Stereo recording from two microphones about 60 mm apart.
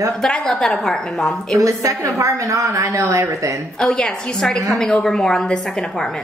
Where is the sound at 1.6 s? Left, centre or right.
Right.